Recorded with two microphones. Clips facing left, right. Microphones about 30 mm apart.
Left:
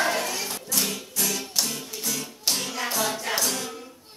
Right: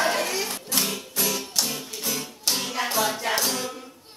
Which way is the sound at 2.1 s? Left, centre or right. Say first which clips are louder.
Right 1 dB; centre.